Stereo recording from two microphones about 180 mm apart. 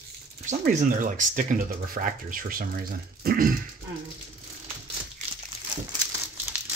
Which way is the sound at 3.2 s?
50° right (ahead or behind).